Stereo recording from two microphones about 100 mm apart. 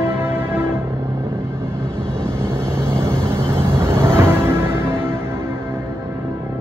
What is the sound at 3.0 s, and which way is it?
Music, 25° right (ahead or behind).